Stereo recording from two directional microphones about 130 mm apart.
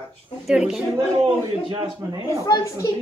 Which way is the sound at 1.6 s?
35° right (ahead or behind).